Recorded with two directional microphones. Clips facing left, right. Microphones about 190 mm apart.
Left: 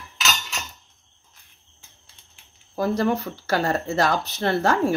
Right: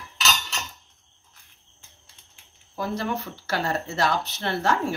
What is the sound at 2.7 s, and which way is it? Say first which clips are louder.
Speech: left 6 dB; 45° left (ahead or behind).